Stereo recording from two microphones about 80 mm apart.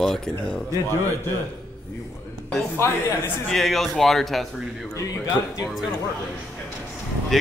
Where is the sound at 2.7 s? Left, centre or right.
Left.